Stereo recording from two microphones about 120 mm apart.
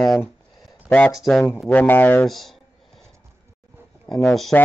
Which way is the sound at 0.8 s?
10° left (ahead or behind).